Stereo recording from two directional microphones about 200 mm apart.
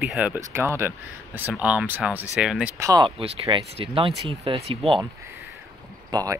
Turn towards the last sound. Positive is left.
turn(degrees=-20)  # may be behind; listen again after turning